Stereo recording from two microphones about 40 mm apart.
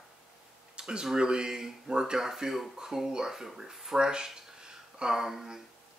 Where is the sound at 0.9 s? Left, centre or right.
Centre.